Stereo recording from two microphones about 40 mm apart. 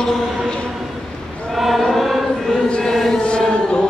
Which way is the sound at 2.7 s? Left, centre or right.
Centre.